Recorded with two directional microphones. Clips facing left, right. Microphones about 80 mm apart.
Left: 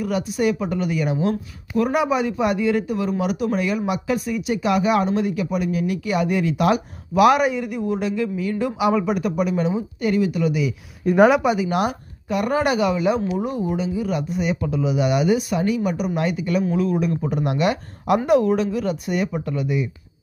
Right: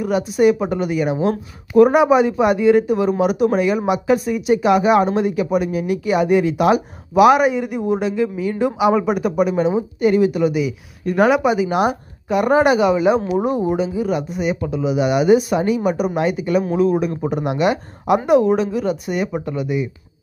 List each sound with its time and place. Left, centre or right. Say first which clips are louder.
0.0 s speech: right 6 dB; right
11.1 s speech: left 1 dB; centre
11.4 s speech: right 4 dB; centre